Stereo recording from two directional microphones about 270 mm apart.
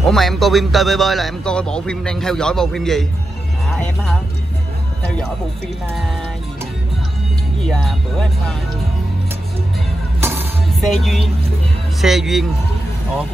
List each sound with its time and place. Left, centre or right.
0.1 s a man's voice: centre
7.6 s a man's voice: centre
10.2 s music: centre
12.0 s a man's voice: centre